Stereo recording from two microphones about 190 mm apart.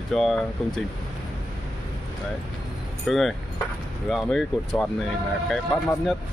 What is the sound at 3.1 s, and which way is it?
Speech, centre (ahead or behind).